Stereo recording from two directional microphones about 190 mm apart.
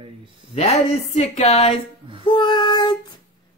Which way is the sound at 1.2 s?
35° left (ahead or behind).